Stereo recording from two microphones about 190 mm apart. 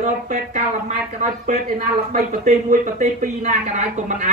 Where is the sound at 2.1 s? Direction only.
40° right (ahead or behind).